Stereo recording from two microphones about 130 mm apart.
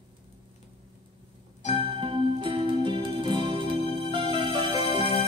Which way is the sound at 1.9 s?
40° right (ahead or behind).